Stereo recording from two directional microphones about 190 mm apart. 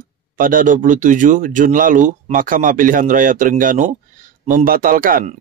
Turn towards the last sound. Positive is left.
turn(degrees=-45)  # may be behind; listen again after turning